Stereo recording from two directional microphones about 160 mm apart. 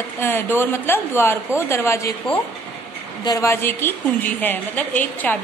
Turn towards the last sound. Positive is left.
turn(degrees=10)  # may be behind; listen again after turning